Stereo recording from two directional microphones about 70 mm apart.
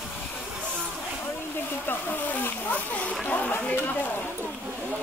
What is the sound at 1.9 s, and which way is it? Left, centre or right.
Speech, left.